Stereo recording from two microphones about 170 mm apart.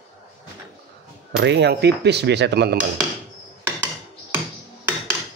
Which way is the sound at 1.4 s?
85° right.